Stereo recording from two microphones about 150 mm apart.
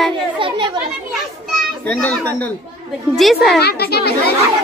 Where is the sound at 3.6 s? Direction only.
90° left.